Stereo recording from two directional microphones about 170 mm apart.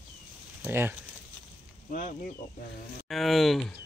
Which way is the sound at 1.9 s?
50° left (ahead or behind).